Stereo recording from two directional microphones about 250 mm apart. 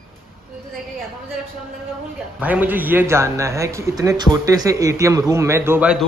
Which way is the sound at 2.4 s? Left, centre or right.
Centre.